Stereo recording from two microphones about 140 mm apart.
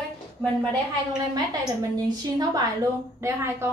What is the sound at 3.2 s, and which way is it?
Speech, 20° right (ahead or behind).